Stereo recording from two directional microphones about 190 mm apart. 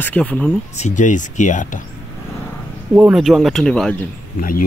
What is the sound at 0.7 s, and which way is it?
Speech, 40° left (ahead or behind).